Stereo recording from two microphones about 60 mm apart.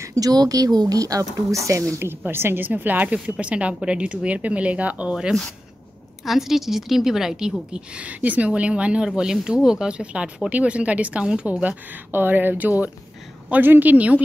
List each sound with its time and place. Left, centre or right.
0.0 s speech: right
2.0 s a woman's voice: right
6.2 s a woman's voice: centre
7.7 s a woman's voice: centre